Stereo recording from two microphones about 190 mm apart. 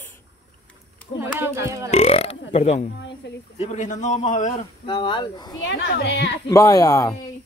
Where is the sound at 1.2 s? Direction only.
15° right (ahead or behind).